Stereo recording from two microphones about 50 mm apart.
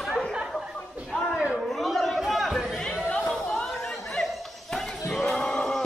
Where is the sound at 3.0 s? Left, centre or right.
Left.